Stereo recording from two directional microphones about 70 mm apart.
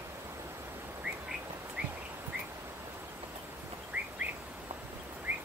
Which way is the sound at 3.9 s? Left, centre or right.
Right.